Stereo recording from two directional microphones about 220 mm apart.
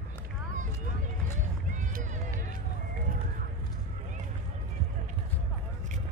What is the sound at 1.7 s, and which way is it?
Run, 35° right (ahead or behind).